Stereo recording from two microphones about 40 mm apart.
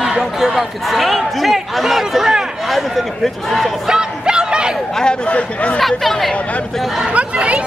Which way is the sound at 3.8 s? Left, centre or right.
Centre.